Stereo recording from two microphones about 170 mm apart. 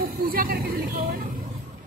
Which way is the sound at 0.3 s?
60° right (ahead or behind).